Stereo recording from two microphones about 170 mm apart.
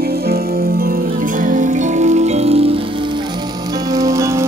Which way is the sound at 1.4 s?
50° right (ahead or behind).